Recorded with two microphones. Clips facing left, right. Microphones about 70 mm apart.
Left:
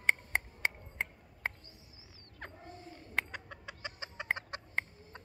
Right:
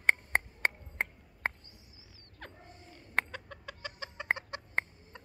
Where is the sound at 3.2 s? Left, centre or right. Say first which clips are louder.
Right 1 dB; centre.